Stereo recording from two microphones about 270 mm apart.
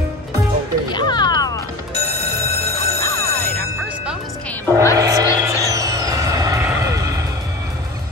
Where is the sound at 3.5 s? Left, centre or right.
Centre.